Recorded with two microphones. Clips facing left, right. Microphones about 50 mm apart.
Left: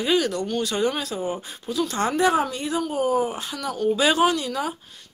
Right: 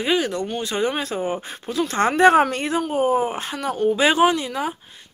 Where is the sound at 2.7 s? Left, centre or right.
Right.